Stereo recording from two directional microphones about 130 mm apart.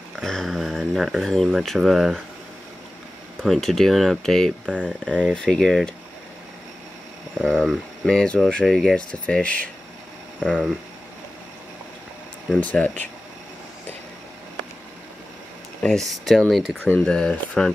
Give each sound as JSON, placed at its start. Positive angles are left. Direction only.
{"t": 0.2, "sound": "speech", "side_deg": 5}
{"t": 3.4, "sound": "speech", "side_deg": 0}
{"t": 7.3, "sound": "speech", "side_deg": 0}
{"t": 12.5, "sound": "speech", "side_deg": 10}
{"t": 15.8, "sound": "speech", "side_deg": 5}
{"t": 16.8, "sound": "speech", "side_deg": 10}